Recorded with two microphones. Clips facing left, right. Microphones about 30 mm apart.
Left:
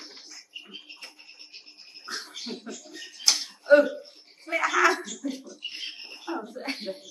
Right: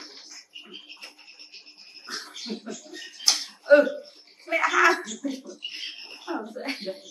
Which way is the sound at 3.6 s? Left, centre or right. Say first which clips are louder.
Right 1 dB; centre.